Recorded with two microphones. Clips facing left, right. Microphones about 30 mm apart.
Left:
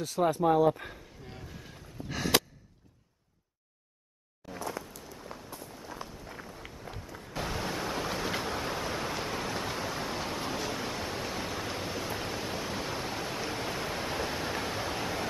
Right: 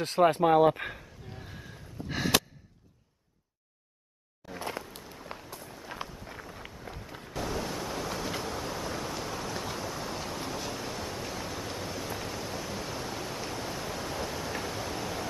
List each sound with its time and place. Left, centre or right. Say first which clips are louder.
0.0 s speech: right 4 dB; right
1.4 s boat: right 1 dB; right
2.0 s gasp: right 2 dB; centre
4.6 s a sound: right 1 dB; right
5.6 s walk: right 2 dB; centre
7.3 s waves: even; left
7.8 s vehicle: left 1 dB; left
8.1 s train: left 2 dB; centre
14.6 s a sound: left 1 dB; left